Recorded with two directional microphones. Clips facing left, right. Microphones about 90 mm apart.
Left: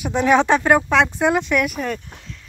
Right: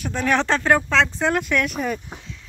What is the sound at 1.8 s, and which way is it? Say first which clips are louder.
Speech: even; 5° right (ahead or behind).